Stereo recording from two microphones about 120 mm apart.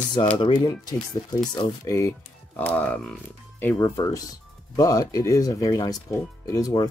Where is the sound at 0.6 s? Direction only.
30° left (ahead or behind); by 3.7 s 10° left (ahead or behind).